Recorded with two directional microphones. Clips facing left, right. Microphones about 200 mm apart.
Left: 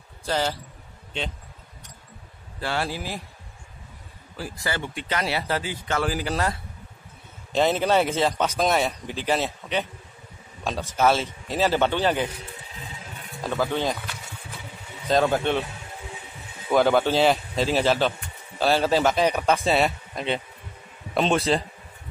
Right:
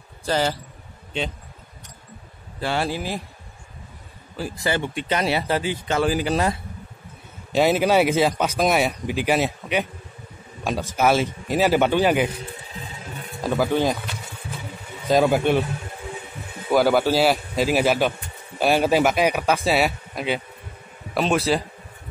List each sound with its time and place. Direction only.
0.3 s speech: 10° right (ahead or behind)
2.6 s speech: 20° right (ahead or behind)
4.4 s speech: 25° right (ahead or behind)
13.4 s speech: 10° right (ahead or behind)
15.0 s speech: 10° right (ahead or behind)
16.7 s speech: 5° right (ahead or behind)